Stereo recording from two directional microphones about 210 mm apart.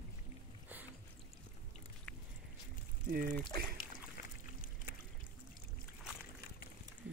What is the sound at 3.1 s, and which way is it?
Speech, 45° right (ahead or behind).